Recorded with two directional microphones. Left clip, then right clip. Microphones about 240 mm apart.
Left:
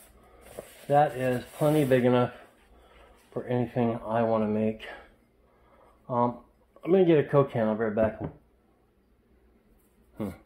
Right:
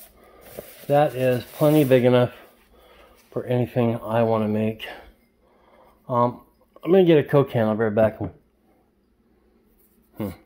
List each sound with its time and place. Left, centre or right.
0.8 s speech: right
6.0 s speech: right
10.1 s a sound: right